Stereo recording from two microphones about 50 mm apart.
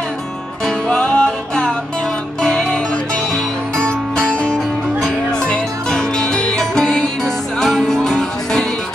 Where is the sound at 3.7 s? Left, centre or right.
Centre.